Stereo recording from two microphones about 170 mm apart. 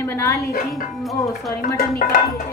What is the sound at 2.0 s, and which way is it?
Speech, 60° left (ahead or behind).